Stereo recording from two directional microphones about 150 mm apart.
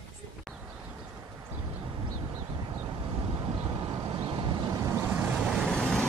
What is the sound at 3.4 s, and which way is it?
Vehicle, 25° right (ahead or behind).